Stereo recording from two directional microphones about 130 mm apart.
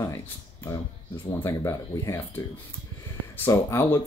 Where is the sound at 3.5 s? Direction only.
20° left (ahead or behind).